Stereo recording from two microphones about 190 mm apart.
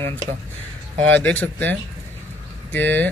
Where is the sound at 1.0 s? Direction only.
5° left (ahead or behind).